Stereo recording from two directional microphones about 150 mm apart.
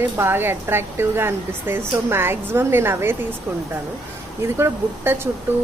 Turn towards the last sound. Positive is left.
turn(degrees=-15)  # may be behind; listen again after turning